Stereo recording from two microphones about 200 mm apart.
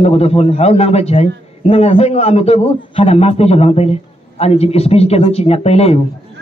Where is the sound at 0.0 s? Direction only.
30° left (ahead or behind).